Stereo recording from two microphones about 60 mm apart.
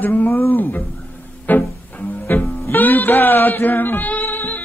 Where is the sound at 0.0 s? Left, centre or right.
Left.